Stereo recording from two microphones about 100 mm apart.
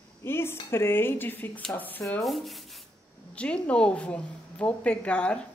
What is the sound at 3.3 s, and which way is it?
A woman's voice, 10° left (ahead or behind).